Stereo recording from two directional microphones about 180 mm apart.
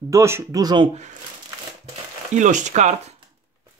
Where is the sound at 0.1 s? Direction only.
15° right (ahead or behind).